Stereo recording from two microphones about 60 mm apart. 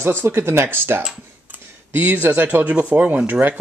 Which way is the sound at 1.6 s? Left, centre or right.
Right.